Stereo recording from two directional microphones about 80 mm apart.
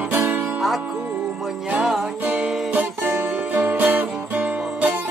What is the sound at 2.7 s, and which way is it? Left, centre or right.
Music, centre.